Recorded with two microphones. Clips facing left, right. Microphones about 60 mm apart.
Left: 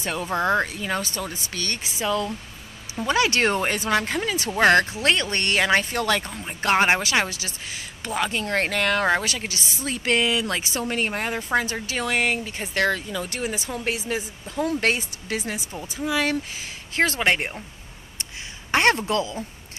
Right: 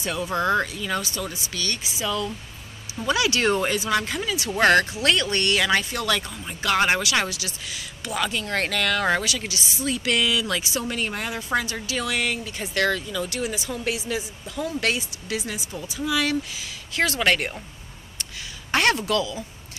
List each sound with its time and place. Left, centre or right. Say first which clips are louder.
0.0 s speech: even; left
4.5 s speech: left 1 dB; centre
4.7 s speech: even; left
9.2 s a woman's voice: even; left
18.7 s a woman's voice: left 1 dB; left